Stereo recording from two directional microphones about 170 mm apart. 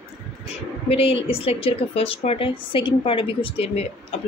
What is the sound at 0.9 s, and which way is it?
Speech, 35° left (ahead or behind).